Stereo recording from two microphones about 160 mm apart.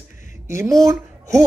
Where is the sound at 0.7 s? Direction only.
Centre (ahead or behind).